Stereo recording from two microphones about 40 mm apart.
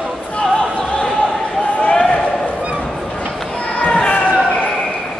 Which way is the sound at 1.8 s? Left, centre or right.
Left.